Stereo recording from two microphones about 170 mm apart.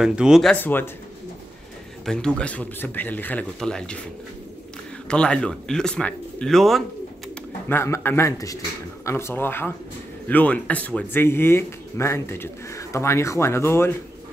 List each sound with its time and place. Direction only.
0.0 s speech: 5° right (ahead or behind); by 0.8 s 10° left (ahead or behind)
2.0 s speech: 5° left (ahead or behind)
5.0 s speech: 5° left (ahead or behind)
7.6 s speech: 15° left (ahead or behind)